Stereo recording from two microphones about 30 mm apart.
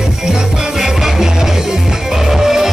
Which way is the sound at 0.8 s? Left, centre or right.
Centre.